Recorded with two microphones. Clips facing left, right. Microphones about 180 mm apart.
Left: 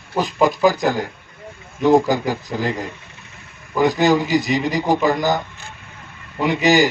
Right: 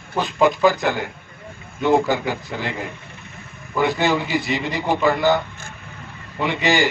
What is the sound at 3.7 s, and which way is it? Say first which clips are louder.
A man's voice: left 4 dB; 40° left (ahead or behind).